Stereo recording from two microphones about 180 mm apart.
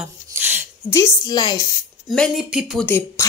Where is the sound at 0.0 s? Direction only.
10° right (ahead or behind).